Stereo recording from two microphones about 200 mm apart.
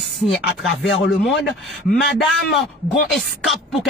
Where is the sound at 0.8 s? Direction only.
70° left (ahead or behind).